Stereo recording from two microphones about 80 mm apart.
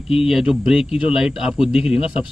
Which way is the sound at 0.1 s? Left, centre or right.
Centre.